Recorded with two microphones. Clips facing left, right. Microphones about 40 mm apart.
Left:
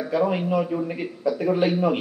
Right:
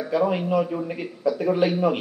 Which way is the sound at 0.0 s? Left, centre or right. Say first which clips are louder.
Even; centre.